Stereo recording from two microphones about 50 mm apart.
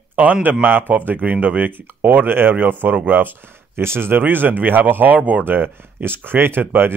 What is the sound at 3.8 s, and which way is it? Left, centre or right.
A man's voice, right.